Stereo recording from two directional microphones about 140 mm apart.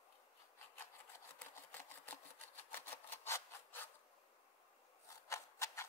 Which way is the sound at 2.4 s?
15° left (ahead or behind).